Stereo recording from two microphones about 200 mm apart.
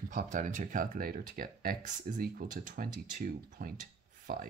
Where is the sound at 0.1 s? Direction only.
40° right (ahead or behind).